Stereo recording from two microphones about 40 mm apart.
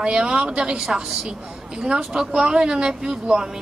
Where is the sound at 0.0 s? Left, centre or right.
Right.